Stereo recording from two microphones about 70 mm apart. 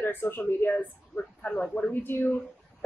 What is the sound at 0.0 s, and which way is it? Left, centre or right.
Speech, left.